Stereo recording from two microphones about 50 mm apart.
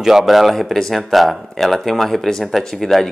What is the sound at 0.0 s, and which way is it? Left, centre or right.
Speech, centre.